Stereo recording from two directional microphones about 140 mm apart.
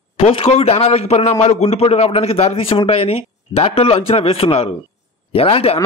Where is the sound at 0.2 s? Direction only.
40° left (ahead or behind).